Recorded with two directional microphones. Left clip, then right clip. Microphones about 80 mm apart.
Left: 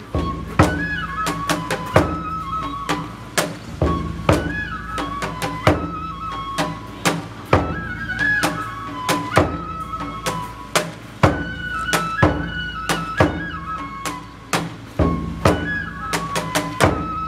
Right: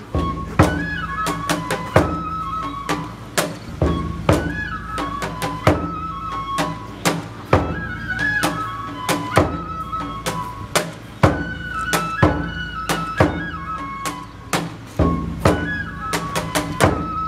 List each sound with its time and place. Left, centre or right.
0.1 s music: centre